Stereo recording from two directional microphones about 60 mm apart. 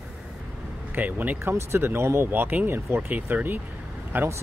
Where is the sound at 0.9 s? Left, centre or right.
Right.